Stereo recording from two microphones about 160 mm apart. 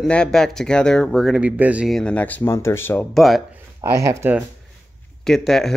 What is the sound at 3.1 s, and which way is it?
Speech, centre (ahead or behind).